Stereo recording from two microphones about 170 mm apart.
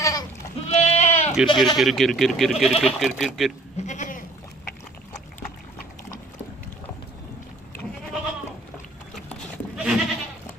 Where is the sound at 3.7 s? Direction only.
45° left (ahead or behind).